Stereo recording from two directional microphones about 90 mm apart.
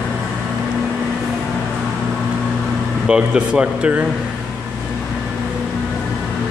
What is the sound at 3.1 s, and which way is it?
Speech, 10° right (ahead or behind).